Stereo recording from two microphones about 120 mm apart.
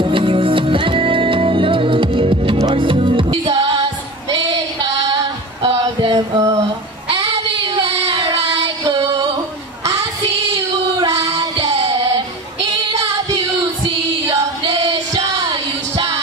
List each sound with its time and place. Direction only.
0.0 s music: 45° right (ahead or behind)
5.6 s a sound: 50° right (ahead or behind)
6.1 s a sound: 25° right (ahead or behind)
9.0 s music: 30° right (ahead or behind)
9.8 s child singing: 25° right (ahead or behind)
14.2 s choir: 25° right (ahead or behind)